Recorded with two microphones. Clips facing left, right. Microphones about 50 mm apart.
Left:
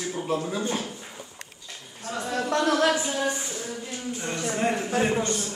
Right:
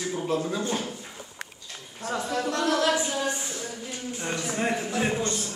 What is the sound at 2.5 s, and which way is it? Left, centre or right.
Speech, left.